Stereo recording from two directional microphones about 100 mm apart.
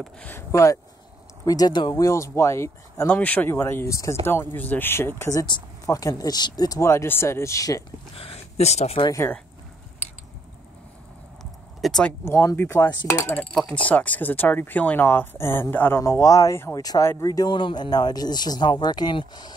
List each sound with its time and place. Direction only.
0.2 s speech: 20° left (ahead or behind); by 2.0 s 50° left (ahead or behind)
2.0 s speech: 30° left (ahead or behind)
3.1 s speech: 15° left (ahead or behind); by 7.8 s 35° left (ahead or behind)
8.1 s speech: 75° left (ahead or behind); by 9.0 s 90° left
11.8 s speech: 5° left (ahead or behind)
12.3 s speech: 25° left (ahead or behind)
13.8 s speech: 15° left (ahead or behind)
16.0 s speech: 30° left (ahead or behind)
16.8 s speech: 40° left (ahead or behind)
17.5 s speech: 50° left (ahead or behind)